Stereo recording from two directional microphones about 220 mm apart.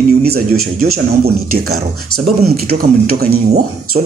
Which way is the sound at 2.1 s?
45° right (ahead or behind).